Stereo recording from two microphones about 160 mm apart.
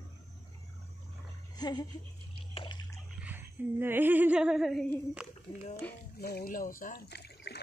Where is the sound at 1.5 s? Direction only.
25° left (ahead or behind).